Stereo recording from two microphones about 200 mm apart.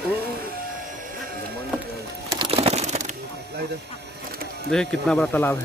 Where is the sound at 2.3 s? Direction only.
25° right (ahead or behind).